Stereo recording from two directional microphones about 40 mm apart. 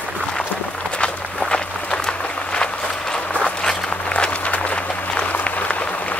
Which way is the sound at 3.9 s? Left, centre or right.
Left.